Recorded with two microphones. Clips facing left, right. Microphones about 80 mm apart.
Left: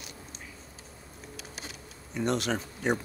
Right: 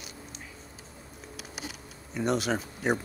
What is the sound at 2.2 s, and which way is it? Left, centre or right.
Speech, centre.